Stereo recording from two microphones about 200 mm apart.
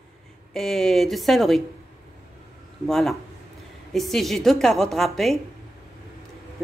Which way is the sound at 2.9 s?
Centre (ahead or behind).